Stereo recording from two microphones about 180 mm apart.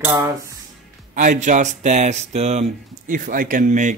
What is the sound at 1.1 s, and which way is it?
Speech, 45° right (ahead or behind).